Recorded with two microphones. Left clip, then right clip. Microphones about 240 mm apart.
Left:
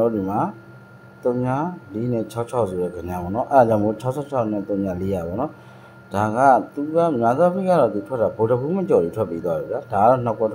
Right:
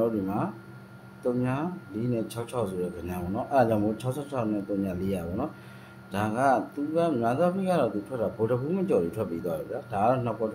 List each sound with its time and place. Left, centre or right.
0.0 s speech: centre